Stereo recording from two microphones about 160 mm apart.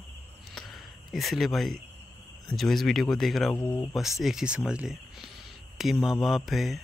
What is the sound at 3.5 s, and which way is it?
Speech, 10° left (ahead or behind).